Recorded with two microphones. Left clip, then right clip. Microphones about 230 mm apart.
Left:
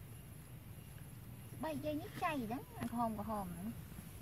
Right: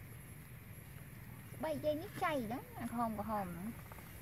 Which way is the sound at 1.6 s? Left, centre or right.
Right.